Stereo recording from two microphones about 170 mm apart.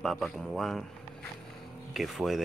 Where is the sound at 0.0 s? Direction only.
Centre (ahead or behind).